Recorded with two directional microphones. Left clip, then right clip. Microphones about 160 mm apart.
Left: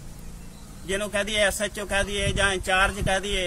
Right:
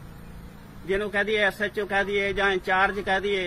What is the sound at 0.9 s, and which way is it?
Speech, 40° left (ahead or behind).